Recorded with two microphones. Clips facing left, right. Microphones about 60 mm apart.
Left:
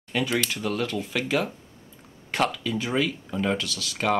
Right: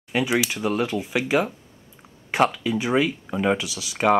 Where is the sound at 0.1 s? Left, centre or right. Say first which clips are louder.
Right 3 dB; centre.